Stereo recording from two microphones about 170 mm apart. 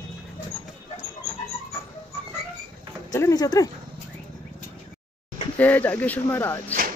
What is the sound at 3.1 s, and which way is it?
Speech, 20° left (ahead or behind).